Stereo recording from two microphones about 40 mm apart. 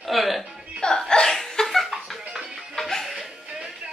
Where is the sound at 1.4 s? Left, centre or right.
Centre.